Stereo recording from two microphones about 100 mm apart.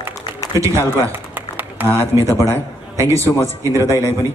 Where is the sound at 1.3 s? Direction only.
20° right (ahead or behind).